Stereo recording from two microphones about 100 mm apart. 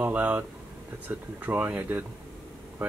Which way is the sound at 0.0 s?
15° right (ahead or behind).